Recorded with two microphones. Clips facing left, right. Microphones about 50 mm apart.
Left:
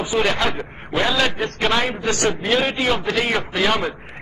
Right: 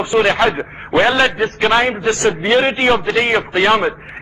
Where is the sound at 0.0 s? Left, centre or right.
Right.